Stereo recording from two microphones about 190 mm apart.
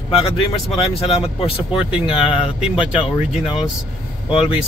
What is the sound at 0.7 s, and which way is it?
Speech, 30° left (ahead or behind).